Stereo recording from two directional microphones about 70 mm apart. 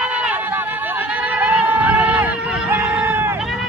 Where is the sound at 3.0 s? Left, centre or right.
Right.